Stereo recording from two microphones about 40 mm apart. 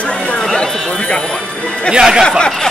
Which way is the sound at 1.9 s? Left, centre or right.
Centre.